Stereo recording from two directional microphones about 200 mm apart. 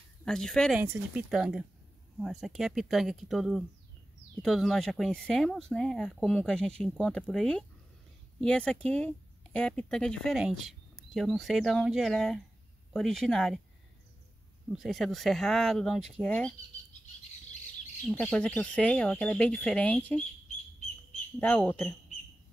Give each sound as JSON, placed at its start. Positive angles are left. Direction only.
{"t": 0.2, "sound": "speech", "side_deg": 5}
{"t": 14.7, "sound": "speech", "side_deg": 0}
{"t": 18.1, "sound": "speech", "side_deg": 5}
{"t": 21.4, "sound": "speech", "side_deg": 5}